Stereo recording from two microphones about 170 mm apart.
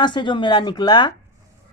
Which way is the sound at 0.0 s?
25° left (ahead or behind).